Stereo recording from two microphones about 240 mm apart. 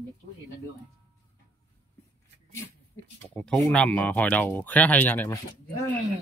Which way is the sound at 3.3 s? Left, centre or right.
Centre.